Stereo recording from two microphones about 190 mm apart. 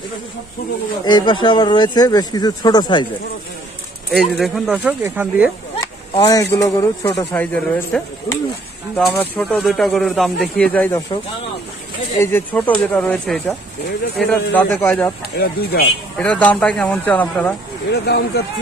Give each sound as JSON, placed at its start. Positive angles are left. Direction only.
{"t": 1.0, "sound": "speech", "side_deg": 25}
{"t": 4.1, "sound": "speech", "side_deg": 0}
{"t": 6.1, "sound": "speech", "side_deg": 20}
{"t": 12.2, "sound": "speech", "side_deg": 10}
{"t": 15.3, "sound": "speech", "side_deg": 55}
{"t": 16.2, "sound": "speech", "side_deg": 5}
{"t": 17.9, "sound": "speech", "side_deg": 60}